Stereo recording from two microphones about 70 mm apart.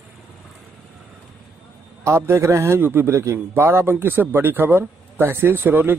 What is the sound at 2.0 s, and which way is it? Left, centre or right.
Speech, right.